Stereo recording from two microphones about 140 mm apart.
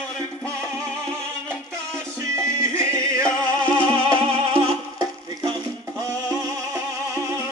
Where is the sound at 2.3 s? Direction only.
20° right (ahead or behind).